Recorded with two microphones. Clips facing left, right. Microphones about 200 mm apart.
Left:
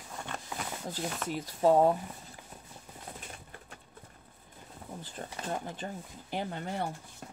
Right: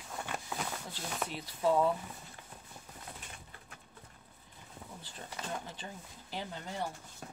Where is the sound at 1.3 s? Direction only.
45° left (ahead or behind).